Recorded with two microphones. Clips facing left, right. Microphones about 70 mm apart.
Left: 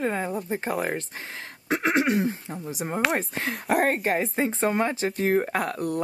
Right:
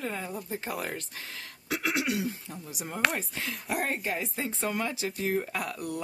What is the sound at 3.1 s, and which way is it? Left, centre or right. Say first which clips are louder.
Speech: left 7 dB; left.